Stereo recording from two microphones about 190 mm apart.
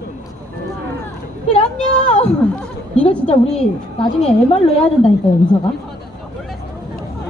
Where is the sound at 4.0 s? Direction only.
35° left (ahead or behind).